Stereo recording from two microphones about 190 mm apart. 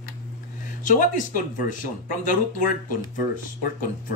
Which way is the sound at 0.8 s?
45° left (ahead or behind).